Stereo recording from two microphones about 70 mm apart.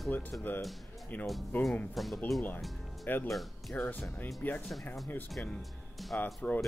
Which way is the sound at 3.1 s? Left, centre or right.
Left.